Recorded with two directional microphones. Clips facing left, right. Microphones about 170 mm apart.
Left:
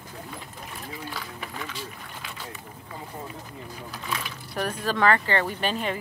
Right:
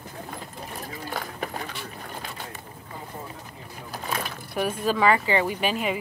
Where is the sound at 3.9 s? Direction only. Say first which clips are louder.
Right 4 dB; 45° right (ahead or behind).